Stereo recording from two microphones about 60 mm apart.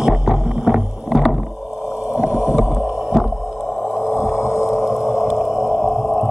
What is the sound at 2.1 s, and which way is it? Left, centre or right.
Boat, centre.